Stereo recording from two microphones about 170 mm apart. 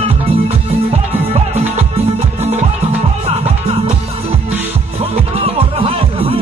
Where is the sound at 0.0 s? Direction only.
35° right (ahead or behind).